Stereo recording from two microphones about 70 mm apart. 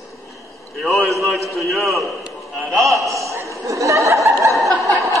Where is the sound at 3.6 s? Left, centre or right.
Right.